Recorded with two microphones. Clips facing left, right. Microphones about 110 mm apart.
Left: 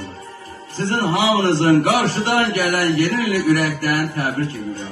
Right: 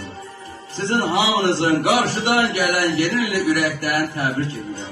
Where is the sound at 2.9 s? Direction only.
15° right (ahead or behind).